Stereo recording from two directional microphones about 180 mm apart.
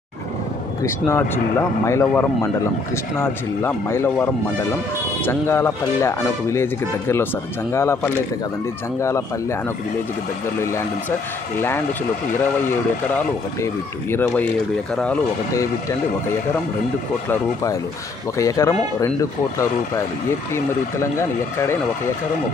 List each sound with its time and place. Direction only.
0.8 s speech: 15° left (ahead or behind)
10.6 s speech: 15° left (ahead or behind)
14.1 s speech: 10° left (ahead or behind)
18.4 s speech: 20° left (ahead or behind)
20.5 s speech: 15° left (ahead or behind)